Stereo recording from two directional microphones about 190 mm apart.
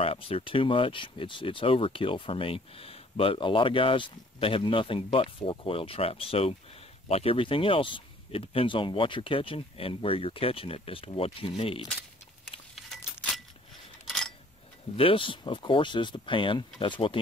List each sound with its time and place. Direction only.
0.0 s speech: 30° left (ahead or behind)
12.7 s keys jangling: centre (ahead or behind)
14.0 s a sound: centre (ahead or behind)
15.0 s speech: 30° left (ahead or behind)